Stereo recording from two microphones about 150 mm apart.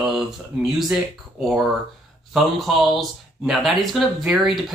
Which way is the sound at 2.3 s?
Centre (ahead or behind).